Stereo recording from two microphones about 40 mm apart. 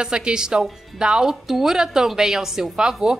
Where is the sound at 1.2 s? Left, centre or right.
Centre.